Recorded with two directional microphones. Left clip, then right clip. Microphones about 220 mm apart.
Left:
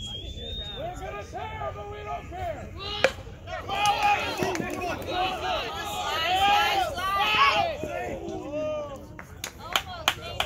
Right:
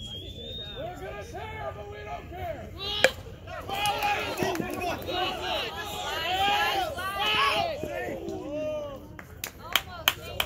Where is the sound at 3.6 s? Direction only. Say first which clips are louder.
Left 4 dB; 35° left (ahead or behind).